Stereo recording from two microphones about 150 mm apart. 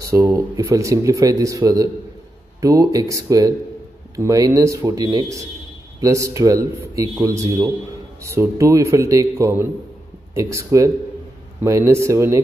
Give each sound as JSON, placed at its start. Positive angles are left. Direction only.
{"t": 0.0, "sound": "speech", "side_deg": -20}